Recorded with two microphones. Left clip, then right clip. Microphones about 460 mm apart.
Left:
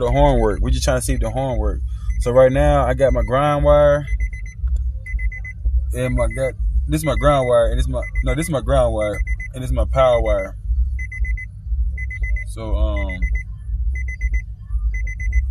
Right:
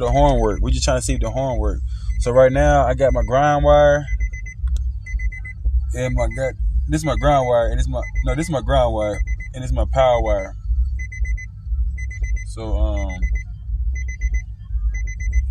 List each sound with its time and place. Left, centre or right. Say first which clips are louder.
0.0 s speech: even; left
5.9 s speech: left 1 dB; left
12.6 s alarm clock: even; left